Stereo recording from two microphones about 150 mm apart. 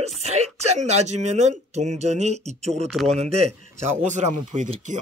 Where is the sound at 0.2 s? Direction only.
45° right (ahead or behind).